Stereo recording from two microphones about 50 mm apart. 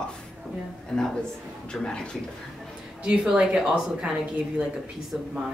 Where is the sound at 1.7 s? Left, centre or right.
Centre.